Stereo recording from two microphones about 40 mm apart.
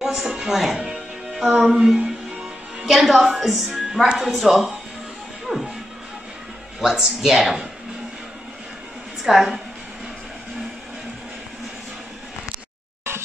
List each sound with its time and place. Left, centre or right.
0.0 s speech: centre
0.8 s music: centre
1.7 s a woman's voice: centre
5.5 s music: centre
6.8 s speech: centre
9.2 s a woman's voice: centre